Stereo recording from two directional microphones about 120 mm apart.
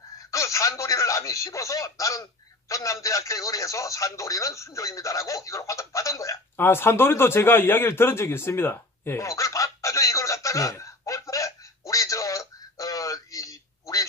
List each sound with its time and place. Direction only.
0.3 s speech: 25° left (ahead or behind)